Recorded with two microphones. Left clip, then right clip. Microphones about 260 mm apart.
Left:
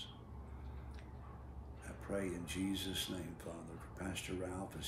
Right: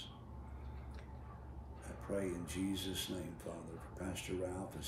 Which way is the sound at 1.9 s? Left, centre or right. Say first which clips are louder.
Right 1 dB; centre.